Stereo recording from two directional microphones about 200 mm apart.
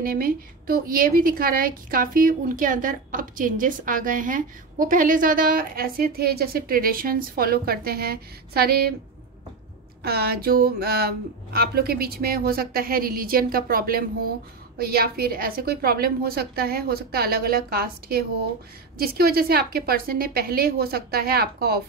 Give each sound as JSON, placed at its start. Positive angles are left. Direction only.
{"t": 0.0, "sound": "a woman's voice", "side_deg": -45}
{"t": 10.0, "sound": "a woman's voice", "side_deg": -50}